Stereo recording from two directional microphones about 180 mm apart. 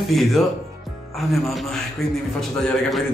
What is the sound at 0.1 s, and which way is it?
A man's voice, centre (ahead or behind).